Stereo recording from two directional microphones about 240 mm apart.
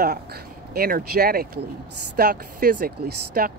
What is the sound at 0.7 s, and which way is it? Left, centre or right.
Speech, right.